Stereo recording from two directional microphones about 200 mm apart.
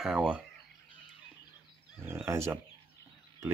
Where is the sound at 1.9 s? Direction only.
5° right (ahead or behind).